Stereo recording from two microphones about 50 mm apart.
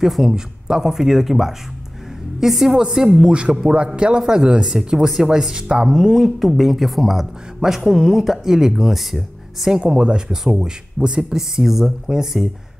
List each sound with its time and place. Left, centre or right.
0.0 s a woman's voice: centre
9.8 s speech: centre